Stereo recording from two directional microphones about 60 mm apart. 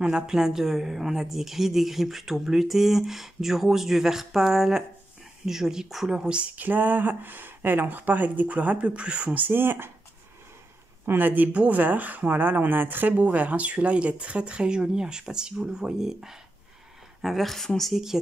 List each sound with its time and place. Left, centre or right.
0.0 s a woman's voice: centre; by 9.8 s right
11.1 s a woman's voice: right; by 18.0 s centre